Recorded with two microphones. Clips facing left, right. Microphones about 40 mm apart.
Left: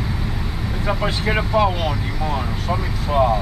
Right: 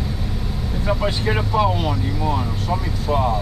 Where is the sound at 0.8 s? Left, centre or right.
Centre.